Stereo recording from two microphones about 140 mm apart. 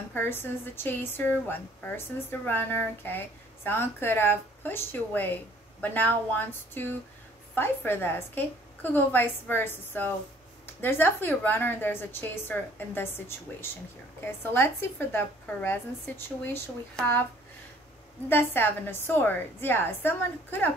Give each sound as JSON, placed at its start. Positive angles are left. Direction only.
{"t": 0.1, "sound": "a woman's voice", "side_deg": 15}
{"t": 14.2, "sound": "a woman's voice", "side_deg": 15}
{"t": 18.3, "sound": "a woman's voice", "side_deg": 15}